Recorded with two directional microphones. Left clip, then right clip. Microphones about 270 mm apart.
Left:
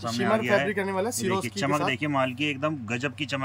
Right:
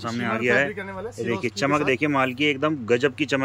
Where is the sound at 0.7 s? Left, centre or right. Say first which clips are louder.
Left 5 dB; left.